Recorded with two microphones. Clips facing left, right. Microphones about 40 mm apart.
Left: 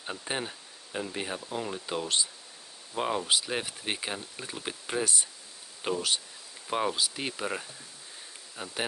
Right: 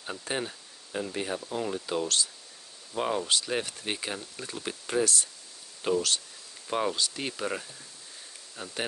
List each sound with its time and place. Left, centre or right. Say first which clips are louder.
0.0 s speech: right 1 dB; centre